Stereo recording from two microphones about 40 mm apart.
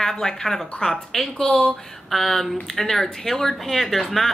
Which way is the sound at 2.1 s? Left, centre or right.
Centre.